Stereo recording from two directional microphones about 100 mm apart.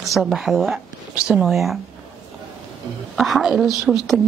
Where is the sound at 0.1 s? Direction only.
5° right (ahead or behind).